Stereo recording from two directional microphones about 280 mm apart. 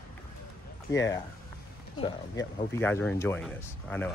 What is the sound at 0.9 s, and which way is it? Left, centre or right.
Speech, centre.